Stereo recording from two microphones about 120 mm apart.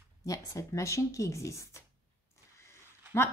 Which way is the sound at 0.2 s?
25° left (ahead or behind).